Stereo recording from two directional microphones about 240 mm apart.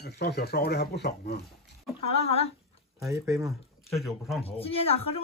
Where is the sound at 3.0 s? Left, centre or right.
Centre.